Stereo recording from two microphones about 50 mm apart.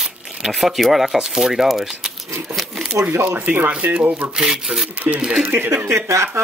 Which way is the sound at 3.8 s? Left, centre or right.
Right.